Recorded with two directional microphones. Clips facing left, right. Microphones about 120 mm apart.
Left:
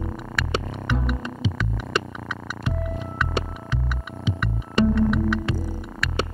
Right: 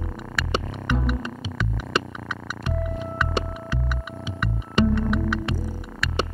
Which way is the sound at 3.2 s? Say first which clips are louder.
Even; centre (ahead or behind).